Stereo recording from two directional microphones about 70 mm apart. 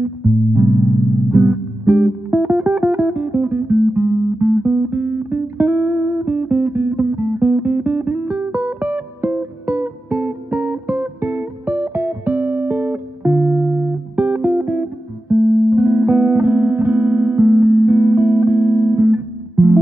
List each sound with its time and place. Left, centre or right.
0.0 s music: right